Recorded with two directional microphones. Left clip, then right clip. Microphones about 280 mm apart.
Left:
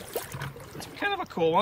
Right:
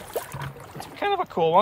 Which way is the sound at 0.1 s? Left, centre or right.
Centre.